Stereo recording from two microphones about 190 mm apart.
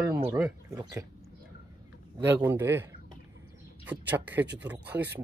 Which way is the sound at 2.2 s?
10° right (ahead or behind).